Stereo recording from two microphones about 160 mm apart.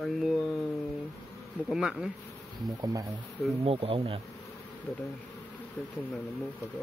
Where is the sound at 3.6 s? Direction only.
35° right (ahead or behind).